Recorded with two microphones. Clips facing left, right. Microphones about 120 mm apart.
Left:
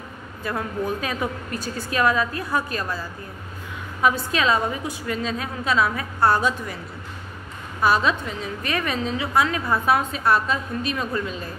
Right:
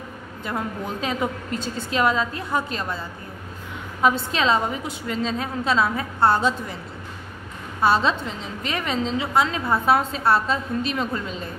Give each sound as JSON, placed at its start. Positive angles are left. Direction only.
{"t": 0.4, "sound": "a woman's voice", "side_deg": -20}
{"t": 7.8, "sound": "a woman's voice", "side_deg": -30}